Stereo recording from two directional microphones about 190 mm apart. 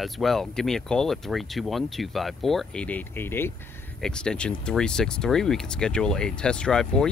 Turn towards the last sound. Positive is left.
turn(degrees=5)  # may be behind; listen again after turning